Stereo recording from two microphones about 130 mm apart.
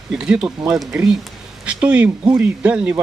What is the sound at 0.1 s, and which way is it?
Speech, 5° right (ahead or behind).